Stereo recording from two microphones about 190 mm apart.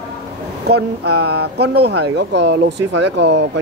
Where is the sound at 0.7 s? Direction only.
60° right (ahead or behind).